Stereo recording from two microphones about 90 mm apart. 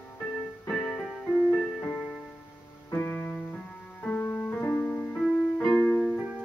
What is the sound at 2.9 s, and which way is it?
Music, 25° left (ahead or behind).